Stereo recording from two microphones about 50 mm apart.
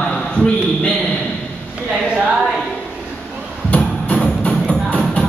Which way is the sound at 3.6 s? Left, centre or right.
Left.